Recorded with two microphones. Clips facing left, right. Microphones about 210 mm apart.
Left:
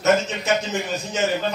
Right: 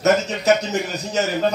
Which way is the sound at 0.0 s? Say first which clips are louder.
Right 2 dB; 40° right (ahead or behind).